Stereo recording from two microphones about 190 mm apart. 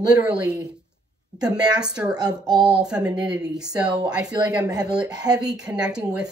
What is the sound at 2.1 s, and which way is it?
Speech, 20° right (ahead or behind).